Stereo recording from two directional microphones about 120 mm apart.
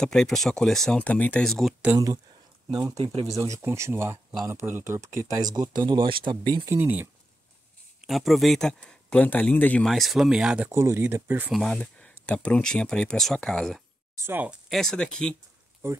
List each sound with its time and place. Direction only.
0.0 s speech: 5° left (ahead or behind)
2.7 s speech: 30° right (ahead or behind)
6.5 s speech: 25° right (ahead or behind)
8.1 s speech: centre (ahead or behind)
9.8 s speech: centre (ahead or behind)
10.7 s speech: 25° right (ahead or behind)
11.5 s speech: 5° left (ahead or behind)
14.1 s speech: 20° right (ahead or behind)
14.7 s speech: 5° left (ahead or behind)
15.8 s speech: 20° right (ahead or behind)